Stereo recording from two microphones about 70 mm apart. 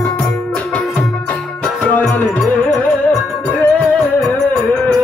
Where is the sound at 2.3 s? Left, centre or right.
Centre.